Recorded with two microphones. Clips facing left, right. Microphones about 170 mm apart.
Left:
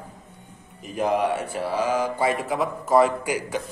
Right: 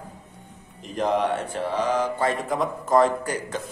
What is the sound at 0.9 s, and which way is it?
Speech, 10° left (ahead or behind).